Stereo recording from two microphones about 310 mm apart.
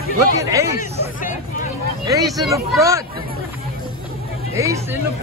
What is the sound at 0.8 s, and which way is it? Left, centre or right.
Hubbub, left.